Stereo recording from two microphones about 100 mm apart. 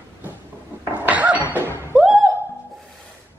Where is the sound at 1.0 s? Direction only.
15° right (ahead or behind).